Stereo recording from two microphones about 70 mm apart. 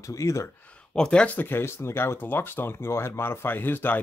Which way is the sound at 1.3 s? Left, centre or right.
Left.